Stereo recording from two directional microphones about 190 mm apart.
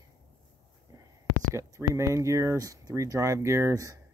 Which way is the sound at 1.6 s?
15° right (ahead or behind).